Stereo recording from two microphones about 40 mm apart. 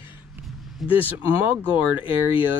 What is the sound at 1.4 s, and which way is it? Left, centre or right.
Speech, right.